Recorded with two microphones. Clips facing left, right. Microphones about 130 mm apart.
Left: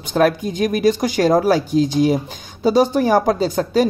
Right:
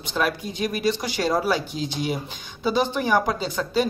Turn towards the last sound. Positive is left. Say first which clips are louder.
# left 7 dB
turn(degrees=45)  # may be behind; listen again after turning